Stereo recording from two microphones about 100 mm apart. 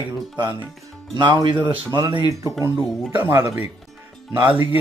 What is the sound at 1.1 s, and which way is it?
Speech, 50° right (ahead or behind).